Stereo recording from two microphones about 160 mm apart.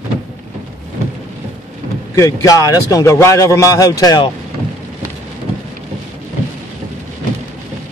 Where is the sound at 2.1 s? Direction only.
20° left (ahead or behind).